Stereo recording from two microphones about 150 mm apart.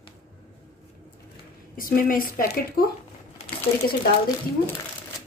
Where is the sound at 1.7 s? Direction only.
70° left (ahead or behind).